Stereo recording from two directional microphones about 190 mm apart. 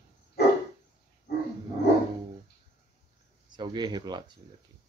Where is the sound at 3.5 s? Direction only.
25° right (ahead or behind).